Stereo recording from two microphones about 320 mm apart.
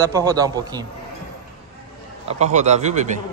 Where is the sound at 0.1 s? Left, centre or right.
Centre.